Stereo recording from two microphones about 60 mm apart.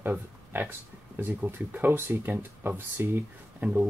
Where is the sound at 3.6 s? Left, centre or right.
Right.